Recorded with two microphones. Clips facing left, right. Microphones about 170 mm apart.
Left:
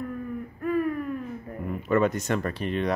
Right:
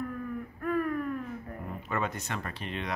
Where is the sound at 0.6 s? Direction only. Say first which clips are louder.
Left 4 dB; 10° left (ahead or behind).